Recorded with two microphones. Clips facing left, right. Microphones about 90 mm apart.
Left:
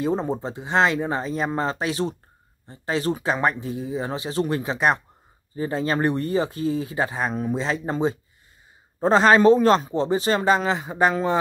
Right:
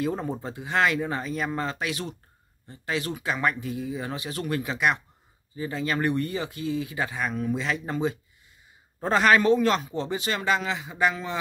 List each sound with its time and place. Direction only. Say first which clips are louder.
0.0 s speech: left 4 dB; 25° left (ahead or behind)